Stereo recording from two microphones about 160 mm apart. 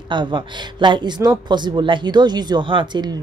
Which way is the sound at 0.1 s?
30° right (ahead or behind).